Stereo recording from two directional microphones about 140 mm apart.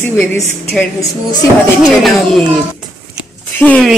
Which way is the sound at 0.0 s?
15° left (ahead or behind).